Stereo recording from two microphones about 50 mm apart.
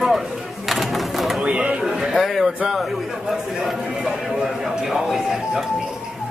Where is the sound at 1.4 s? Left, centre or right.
Right.